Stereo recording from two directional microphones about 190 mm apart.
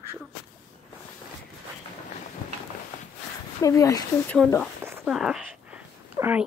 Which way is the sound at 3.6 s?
15° left (ahead or behind).